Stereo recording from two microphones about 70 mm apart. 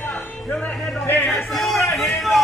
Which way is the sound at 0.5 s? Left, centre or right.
Centre.